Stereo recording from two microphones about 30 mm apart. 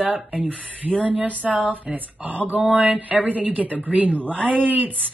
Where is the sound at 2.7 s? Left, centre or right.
Right.